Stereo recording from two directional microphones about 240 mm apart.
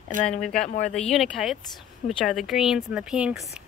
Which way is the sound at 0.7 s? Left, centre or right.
Left.